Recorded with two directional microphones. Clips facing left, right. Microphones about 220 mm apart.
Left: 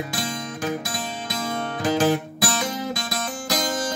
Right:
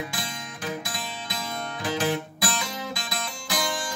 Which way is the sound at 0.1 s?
45° left (ahead or behind).